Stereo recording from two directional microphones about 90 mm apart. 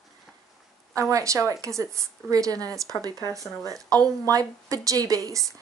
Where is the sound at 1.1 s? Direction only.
35° right (ahead or behind).